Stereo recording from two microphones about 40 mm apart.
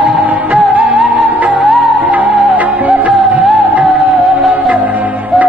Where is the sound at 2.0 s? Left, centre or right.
Right.